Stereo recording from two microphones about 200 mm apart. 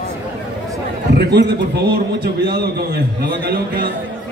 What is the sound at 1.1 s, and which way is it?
A man's voice, 55° right (ahead or behind).